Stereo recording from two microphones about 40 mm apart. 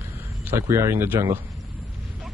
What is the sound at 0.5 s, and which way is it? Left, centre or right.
Speech, right.